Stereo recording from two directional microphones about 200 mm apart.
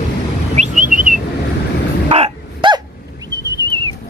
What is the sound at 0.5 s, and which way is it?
Whistling, 35° right (ahead or behind).